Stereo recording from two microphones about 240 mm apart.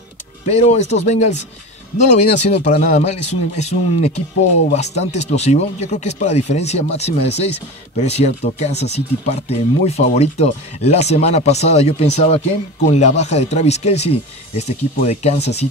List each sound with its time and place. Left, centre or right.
0.5 s speech: left